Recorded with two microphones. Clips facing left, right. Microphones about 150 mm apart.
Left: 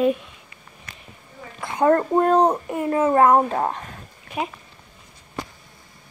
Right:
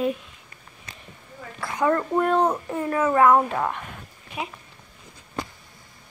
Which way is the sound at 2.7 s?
15° left (ahead or behind).